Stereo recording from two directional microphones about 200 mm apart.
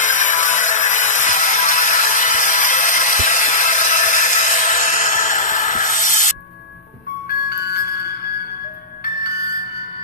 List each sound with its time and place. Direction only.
0.0 s music: 40° left (ahead or behind)
7.4 s music: 50° left (ahead or behind)